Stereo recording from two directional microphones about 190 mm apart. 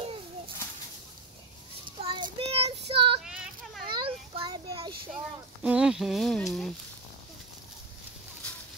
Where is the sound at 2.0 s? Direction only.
30° right (ahead or behind).